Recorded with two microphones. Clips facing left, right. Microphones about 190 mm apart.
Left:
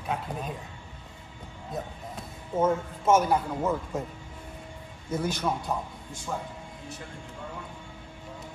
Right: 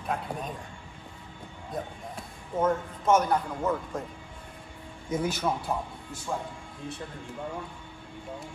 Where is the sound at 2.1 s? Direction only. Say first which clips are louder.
Left 2 dB; 5° left (ahead or behind).